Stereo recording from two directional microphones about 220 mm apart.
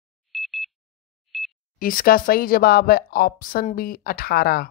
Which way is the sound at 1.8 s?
40° left (ahead or behind).